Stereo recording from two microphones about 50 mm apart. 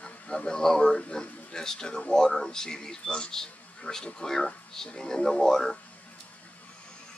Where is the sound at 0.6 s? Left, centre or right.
Centre.